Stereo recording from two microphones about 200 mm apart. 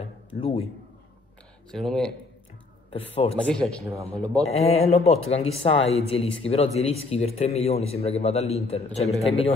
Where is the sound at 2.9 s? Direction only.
30° left (ahead or behind).